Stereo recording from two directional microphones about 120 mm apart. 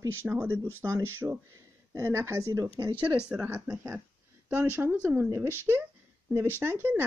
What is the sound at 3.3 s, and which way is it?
Speech, 15° right (ahead or behind).